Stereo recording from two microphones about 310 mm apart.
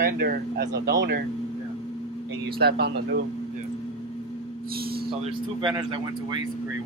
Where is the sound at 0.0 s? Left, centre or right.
Right.